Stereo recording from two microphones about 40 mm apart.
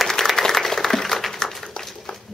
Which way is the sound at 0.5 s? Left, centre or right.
Centre.